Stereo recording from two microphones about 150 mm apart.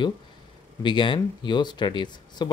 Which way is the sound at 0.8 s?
35° left (ahead or behind).